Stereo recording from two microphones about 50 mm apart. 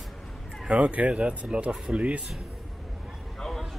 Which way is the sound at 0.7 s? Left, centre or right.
Right.